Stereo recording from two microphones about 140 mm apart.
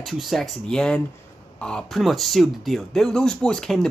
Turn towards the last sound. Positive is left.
turn(degrees=5)  # may be behind; listen again after turning